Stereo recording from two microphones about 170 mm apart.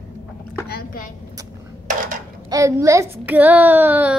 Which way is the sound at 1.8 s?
50° right (ahead or behind).